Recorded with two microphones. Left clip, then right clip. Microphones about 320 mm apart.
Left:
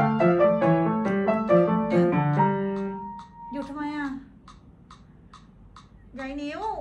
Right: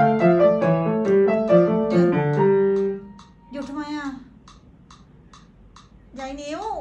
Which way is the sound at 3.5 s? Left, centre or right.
Right.